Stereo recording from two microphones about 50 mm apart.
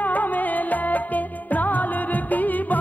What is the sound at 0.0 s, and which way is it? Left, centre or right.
Music, left.